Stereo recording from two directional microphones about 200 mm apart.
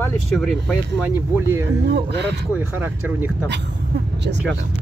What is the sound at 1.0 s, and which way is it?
Speech, 10° right (ahead or behind).